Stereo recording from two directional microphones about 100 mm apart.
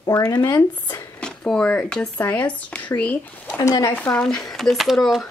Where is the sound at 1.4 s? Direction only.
5° left (ahead or behind).